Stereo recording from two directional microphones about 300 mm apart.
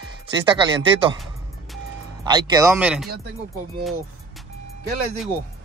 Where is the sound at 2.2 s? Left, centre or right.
Centre.